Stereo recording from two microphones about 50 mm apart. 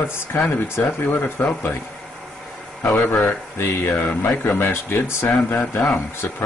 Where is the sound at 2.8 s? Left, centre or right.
Left.